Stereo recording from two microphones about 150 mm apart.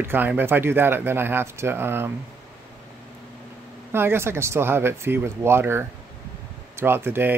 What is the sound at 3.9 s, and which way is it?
Speech, 15° right (ahead or behind).